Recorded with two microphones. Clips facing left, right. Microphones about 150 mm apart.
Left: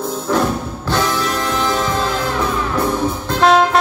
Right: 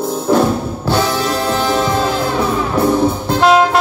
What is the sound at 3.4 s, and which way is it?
Music, centre (ahead or behind).